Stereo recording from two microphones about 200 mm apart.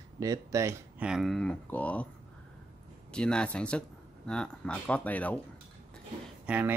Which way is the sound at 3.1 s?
5° left (ahead or behind).